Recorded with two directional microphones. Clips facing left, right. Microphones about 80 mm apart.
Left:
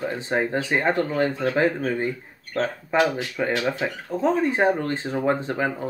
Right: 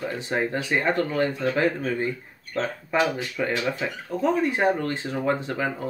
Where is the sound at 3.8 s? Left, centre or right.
Left.